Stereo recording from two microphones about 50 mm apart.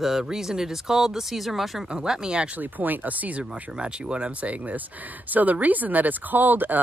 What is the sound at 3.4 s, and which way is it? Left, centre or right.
Speech, right.